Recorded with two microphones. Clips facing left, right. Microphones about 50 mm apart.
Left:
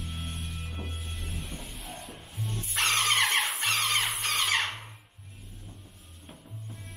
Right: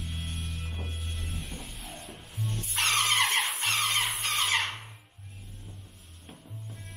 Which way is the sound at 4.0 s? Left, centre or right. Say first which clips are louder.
Even; centre.